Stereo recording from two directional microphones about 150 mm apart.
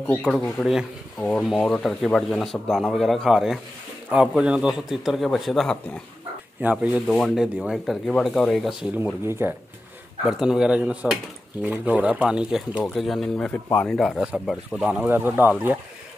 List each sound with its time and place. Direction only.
0.0 s speech: 10° left (ahead or behind)
6.6 s speech: 10° right (ahead or behind)
9.2 s speech: 15° right (ahead or behind)
10.4 s speech: 5° right (ahead or behind)